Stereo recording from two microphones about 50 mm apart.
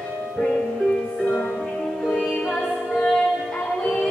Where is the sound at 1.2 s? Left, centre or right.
Left.